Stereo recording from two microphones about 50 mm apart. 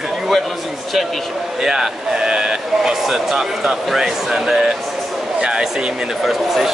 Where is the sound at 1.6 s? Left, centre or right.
Centre.